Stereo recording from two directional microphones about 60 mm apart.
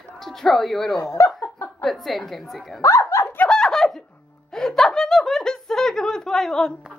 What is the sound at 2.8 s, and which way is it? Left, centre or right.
Speech, left.